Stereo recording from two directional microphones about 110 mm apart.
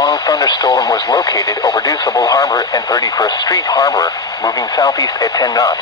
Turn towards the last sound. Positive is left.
turn(degrees=35)  # may be behind; listen again after turning